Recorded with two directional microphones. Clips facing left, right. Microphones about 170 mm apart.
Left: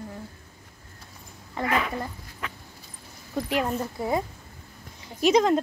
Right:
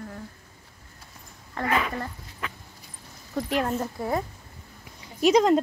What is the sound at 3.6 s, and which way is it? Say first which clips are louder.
Speech: even; 10° left (ahead or behind).